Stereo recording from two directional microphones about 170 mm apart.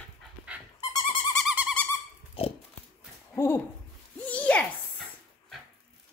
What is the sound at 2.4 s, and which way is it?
Pig, 35° left (ahead or behind).